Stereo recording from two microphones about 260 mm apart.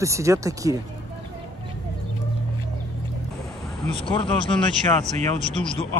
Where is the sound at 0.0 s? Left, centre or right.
Centre.